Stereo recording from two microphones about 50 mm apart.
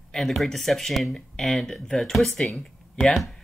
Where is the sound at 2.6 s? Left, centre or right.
Centre.